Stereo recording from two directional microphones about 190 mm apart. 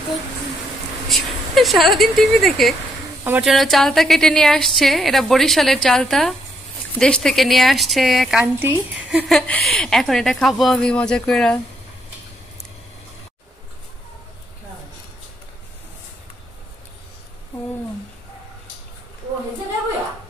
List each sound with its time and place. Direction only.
1.0 s a woman's voice: centre (ahead or behind)
9.3 s a woman's voice: 5° left (ahead or behind)